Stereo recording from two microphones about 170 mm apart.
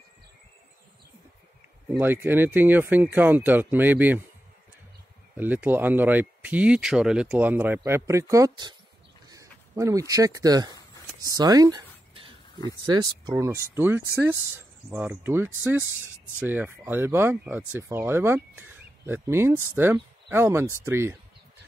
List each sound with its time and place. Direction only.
1.9 s speech: 10° right (ahead or behind)
5.3 s speech: 10° right (ahead or behind)
11.2 s a sound: 20° right (ahead or behind)
12.8 s speech: 25° right (ahead or behind)